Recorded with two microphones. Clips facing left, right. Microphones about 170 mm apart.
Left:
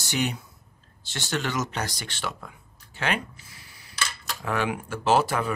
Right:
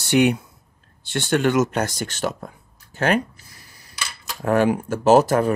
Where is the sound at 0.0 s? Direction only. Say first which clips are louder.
Right 11 dB; 60° right (ahead or behind).